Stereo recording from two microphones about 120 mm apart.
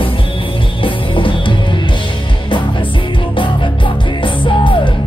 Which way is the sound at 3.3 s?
45° left (ahead or behind).